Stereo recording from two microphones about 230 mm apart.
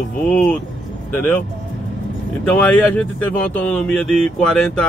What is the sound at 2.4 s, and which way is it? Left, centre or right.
Speech, centre.